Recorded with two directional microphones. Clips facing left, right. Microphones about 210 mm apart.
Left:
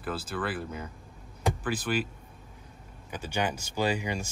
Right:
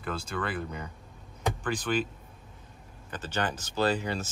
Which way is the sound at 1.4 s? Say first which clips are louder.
Left 1 dB; 5° left (ahead or behind).